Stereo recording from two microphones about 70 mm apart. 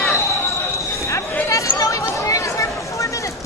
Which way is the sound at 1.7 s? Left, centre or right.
Left.